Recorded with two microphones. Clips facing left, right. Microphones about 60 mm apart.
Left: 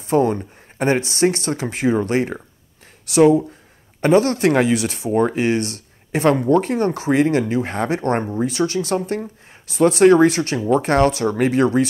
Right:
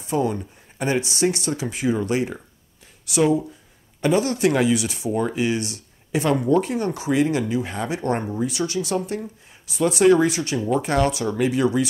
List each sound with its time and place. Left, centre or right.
0.0 s speech: left